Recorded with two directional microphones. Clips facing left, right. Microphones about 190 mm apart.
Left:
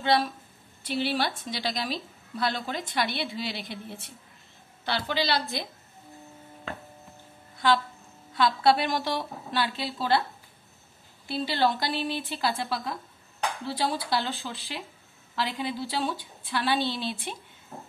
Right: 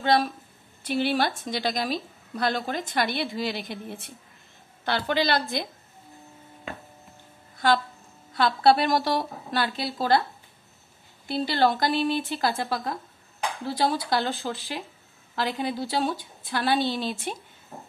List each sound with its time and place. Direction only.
0.0 s a woman's voice: 45° right (ahead or behind)
4.8 s a woman's voice: 50° right (ahead or behind)
8.4 s a woman's voice: 40° right (ahead or behind)
11.2 s a woman's voice: 45° right (ahead or behind)